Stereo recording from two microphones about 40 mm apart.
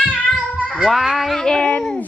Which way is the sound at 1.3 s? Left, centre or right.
Centre.